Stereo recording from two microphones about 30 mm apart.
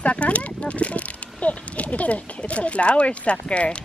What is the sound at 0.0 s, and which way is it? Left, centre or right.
Speech, left.